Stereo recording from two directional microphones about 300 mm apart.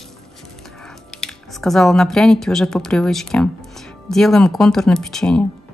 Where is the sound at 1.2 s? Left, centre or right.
Centre.